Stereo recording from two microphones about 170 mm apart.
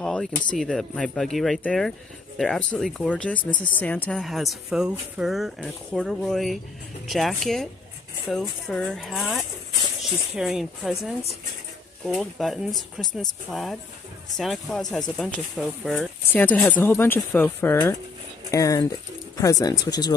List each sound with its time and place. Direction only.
0.0 s a sound: 5° left (ahead or behind)
0.6 s a woman's voice: 5° left (ahead or behind)
16.3 s speech: 10° left (ahead or behind)